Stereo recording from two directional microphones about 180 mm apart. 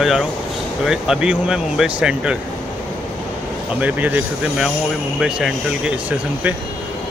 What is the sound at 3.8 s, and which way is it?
Speech, 10° right (ahead or behind).